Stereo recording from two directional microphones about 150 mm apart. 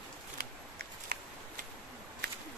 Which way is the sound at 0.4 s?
90° right.